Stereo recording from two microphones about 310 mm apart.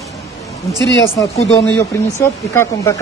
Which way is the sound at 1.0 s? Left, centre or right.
Centre.